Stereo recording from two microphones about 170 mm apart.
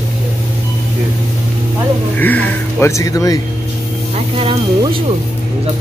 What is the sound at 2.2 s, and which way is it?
Speech, 10° left (ahead or behind).